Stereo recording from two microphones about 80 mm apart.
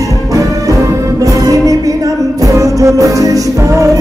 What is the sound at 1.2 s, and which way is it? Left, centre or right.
Music, right.